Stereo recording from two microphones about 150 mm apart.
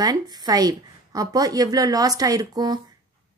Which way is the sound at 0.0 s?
25° right (ahead or behind).